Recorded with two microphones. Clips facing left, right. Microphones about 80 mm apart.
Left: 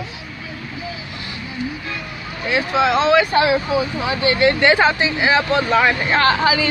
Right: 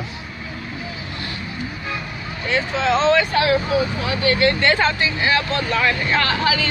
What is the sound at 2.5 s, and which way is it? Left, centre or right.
Speech, centre.